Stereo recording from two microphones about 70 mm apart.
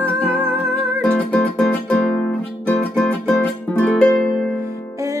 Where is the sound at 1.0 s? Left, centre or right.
Centre.